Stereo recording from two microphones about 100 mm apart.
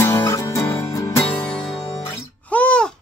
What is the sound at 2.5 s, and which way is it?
Babbling, 10° left (ahead or behind).